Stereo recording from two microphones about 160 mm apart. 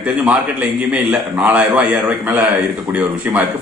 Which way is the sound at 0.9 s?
10° right (ahead or behind).